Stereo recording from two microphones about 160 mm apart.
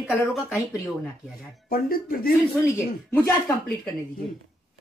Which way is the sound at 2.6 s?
15° left (ahead or behind).